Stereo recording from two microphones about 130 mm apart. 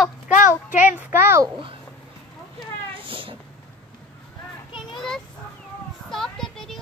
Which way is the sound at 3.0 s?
40° right (ahead or behind).